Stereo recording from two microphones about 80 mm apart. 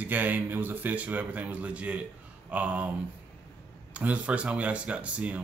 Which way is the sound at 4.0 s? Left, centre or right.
Centre.